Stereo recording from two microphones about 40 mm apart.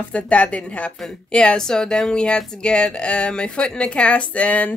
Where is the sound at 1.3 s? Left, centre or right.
Left.